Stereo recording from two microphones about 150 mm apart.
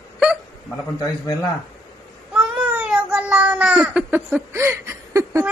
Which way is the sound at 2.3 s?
10° right (ahead or behind).